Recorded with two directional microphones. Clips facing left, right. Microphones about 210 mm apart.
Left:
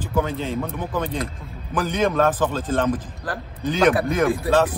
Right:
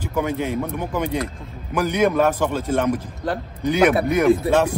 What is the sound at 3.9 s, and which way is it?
Speech, 25° right (ahead or behind).